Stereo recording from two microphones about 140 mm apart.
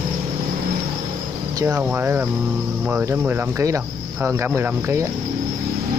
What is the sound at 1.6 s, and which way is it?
Speech, 10° right (ahead or behind).